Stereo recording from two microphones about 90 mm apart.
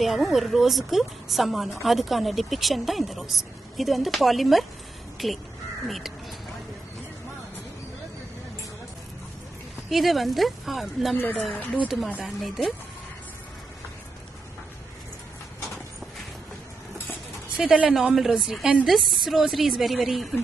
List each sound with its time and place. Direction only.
0.0 s a woman's voice: centre (ahead or behind)
9.8 s a woman's voice: centre (ahead or behind)
11.1 s speech: 20° left (ahead or behind)
12.2 s a woman's voice: centre (ahead or behind)
17.6 s a woman's voice: 10° right (ahead or behind)